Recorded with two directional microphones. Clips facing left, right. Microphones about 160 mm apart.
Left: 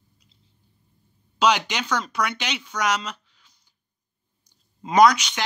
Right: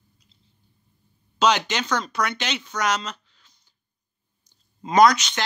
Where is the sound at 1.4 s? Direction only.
10° left (ahead or behind).